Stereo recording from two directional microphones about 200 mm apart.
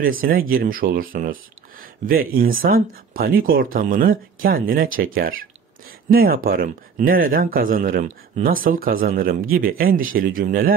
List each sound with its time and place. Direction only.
0.0 s speech: 45° right (ahead or behind)